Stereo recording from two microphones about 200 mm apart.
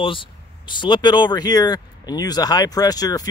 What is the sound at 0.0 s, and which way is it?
Speech, 25° left (ahead or behind).